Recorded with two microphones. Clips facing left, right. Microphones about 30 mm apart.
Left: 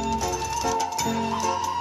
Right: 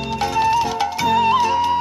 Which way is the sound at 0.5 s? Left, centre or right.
Right.